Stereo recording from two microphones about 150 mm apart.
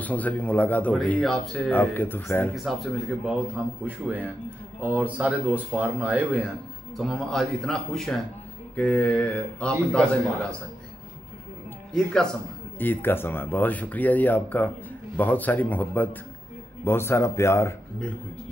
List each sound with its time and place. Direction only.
0.0 s speech: 10° left (ahead or behind)
2.5 s a man's voice: centre (ahead or behind)
11.9 s a man's voice: 5° left (ahead or behind)